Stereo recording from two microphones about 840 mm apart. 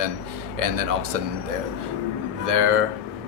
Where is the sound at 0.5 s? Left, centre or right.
Right.